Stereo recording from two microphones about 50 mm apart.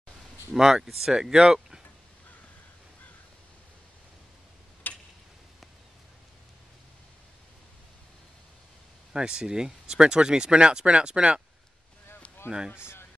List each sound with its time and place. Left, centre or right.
0.5 s speech: centre
1.1 s speech: centre
4.9 s tick-tock: left
9.1 s speech: centre
12.7 s speech: left